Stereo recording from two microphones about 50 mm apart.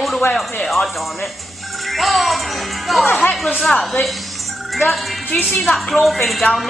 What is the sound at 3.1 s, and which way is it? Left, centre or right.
Speech, left.